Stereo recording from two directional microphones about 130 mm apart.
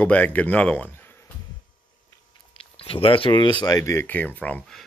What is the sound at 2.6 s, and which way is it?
Speech, 45° left (ahead or behind).